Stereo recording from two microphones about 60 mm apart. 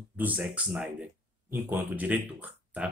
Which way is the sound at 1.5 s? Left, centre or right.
Right.